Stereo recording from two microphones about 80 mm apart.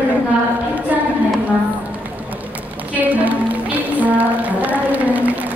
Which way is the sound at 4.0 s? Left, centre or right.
Right.